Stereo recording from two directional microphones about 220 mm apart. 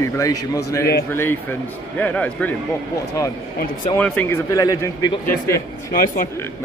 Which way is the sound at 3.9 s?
5° left (ahead or behind).